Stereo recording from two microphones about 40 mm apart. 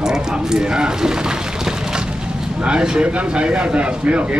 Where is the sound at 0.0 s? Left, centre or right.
Centre.